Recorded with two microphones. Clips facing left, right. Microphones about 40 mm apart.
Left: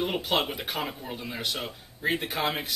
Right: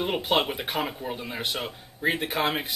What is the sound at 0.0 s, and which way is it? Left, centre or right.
A man's voice, centre.